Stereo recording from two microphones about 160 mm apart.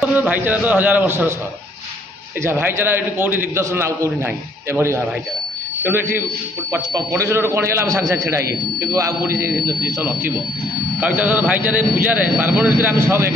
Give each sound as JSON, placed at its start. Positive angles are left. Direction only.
{"t": 0.1, "sound": "a man's voice", "side_deg": -10}
{"t": 2.4, "sound": "a man's voice", "side_deg": -15}